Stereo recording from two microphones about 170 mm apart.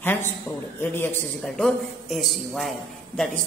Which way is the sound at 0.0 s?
10° left (ahead or behind).